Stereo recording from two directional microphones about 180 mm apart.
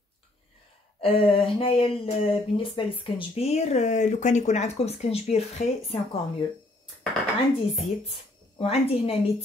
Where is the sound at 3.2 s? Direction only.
35° left (ahead or behind).